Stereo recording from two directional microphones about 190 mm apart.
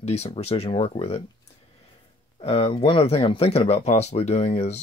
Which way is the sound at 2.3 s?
30° left (ahead or behind).